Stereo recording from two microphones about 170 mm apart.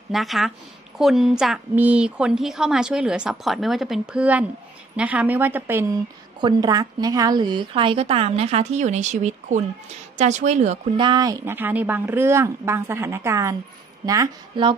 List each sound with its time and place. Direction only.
0.1 s a woman's voice: centre (ahead or behind)
6.4 s a woman's voice: 25° right (ahead or behind); by 10.8 s 40° right (ahead or behind)
11.0 s a woman's voice: 25° right (ahead or behind)